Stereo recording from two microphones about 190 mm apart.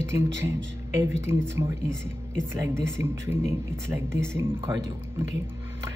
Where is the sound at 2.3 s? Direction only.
15° right (ahead or behind).